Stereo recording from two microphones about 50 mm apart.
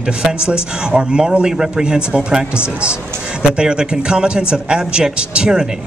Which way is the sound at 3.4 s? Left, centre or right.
Centre.